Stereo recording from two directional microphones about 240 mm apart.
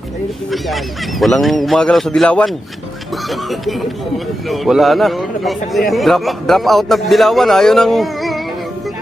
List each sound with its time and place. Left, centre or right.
1.2 s a man's voice: centre